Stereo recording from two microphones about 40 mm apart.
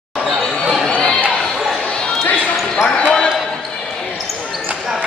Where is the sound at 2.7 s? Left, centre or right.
Centre.